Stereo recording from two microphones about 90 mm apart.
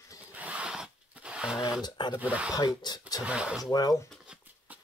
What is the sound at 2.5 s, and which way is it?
Speech, 55° left (ahead or behind).